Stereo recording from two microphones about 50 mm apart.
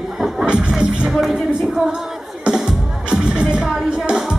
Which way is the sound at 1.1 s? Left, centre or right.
Centre.